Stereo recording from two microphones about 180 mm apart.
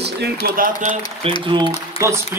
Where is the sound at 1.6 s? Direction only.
15° right (ahead or behind).